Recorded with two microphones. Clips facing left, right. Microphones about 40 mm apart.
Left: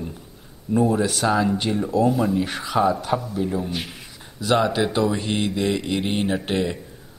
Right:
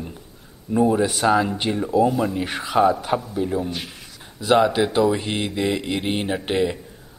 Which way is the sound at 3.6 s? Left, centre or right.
Centre.